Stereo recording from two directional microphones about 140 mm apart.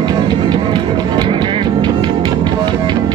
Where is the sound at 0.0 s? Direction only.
30° right (ahead or behind).